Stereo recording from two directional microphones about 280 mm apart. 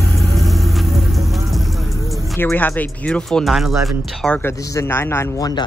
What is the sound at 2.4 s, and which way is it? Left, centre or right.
Speech, centre.